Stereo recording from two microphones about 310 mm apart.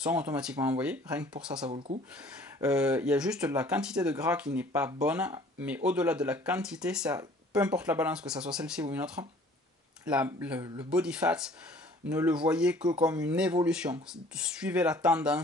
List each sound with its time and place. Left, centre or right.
0.0 s speech: centre
1.7 s speech: centre
2.6 s speech: centre